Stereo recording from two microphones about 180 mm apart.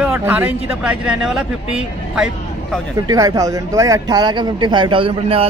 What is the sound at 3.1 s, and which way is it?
Speech, 20° right (ahead or behind).